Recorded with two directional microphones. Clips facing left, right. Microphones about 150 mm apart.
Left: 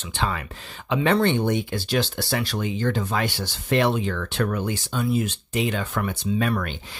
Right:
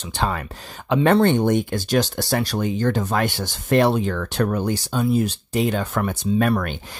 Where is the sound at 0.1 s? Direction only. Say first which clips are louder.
Right 3 dB; 45° right (ahead or behind).